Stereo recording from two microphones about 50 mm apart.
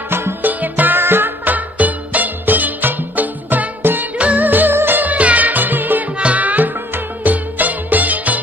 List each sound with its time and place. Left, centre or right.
0.1 s music: right
0.5 s music: right
5.1 s music: right
6.1 s music: right